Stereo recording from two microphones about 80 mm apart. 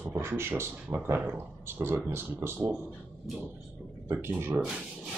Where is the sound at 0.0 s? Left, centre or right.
Right.